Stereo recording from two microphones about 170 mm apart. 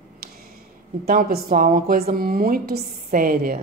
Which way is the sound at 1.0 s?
60° right (ahead or behind).